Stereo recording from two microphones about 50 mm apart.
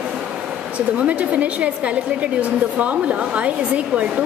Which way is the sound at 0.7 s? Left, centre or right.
Right.